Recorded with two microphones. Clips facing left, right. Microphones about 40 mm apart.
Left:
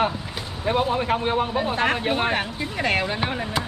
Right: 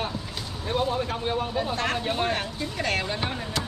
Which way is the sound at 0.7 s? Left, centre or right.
Left.